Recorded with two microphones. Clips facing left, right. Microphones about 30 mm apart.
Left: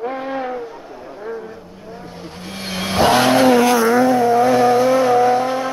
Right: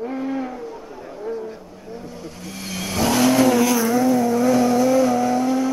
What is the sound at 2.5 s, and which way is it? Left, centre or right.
Vehicle, left.